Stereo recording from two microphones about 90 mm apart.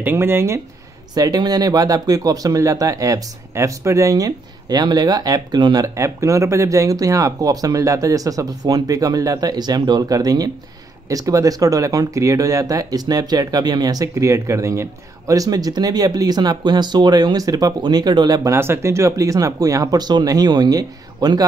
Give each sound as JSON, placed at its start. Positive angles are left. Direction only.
{"t": 0.0, "sound": "speech", "side_deg": -25}
{"t": 1.1, "sound": "speech", "side_deg": -45}
{"t": 5.9, "sound": "speech", "side_deg": -35}
{"t": 18.5, "sound": "speech", "side_deg": -30}